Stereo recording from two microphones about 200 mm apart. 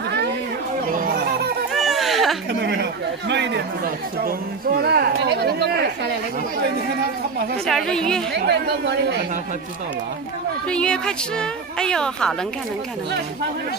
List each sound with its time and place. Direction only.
0.8 s children playing: 45° right (ahead or behind)
1.7 s a sound: centre (ahead or behind)
2.6 s a sound: 55° right (ahead or behind)
7.6 s a woman's voice: centre (ahead or behind)
8.4 s speech: 55° right (ahead or behind)
10.7 s a woman's voice: 5° left (ahead or behind)